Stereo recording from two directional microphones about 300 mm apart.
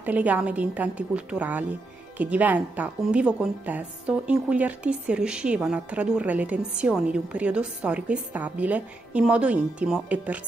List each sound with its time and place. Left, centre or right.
0.0 s a woman's voice: centre